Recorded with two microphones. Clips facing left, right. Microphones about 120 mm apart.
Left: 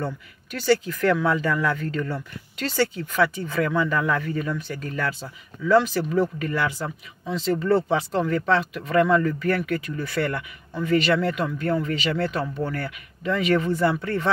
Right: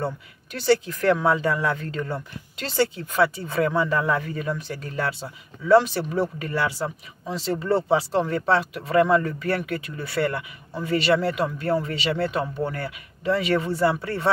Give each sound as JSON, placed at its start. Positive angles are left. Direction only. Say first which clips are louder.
{"t": 1.0, "sound": "speech", "louder": "right 1 dB", "side_deg": -30}